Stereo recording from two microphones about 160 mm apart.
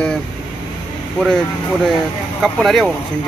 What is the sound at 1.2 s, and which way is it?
Speech, centre (ahead or behind).